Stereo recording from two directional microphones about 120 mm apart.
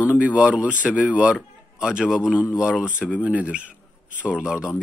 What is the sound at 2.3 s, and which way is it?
Speech, 20° left (ahead or behind).